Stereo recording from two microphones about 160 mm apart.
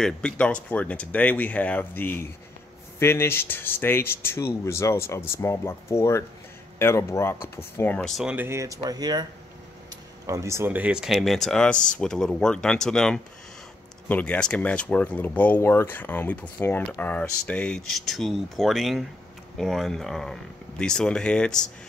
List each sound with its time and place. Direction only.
0.0 s speech: 5° left (ahead or behind); by 9.2 s 25° right (ahead or behind)
10.2 s speech: 20° right (ahead or behind); by 21.6 s 5° left (ahead or behind)